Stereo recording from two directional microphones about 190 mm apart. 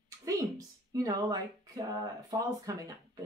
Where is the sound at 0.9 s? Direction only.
20° right (ahead or behind).